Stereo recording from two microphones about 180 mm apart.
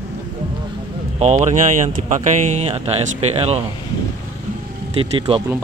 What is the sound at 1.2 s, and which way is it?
Speech, 40° right (ahead or behind).